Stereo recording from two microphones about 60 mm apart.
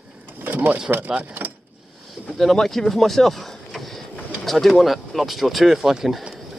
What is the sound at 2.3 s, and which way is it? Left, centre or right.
Speech, centre.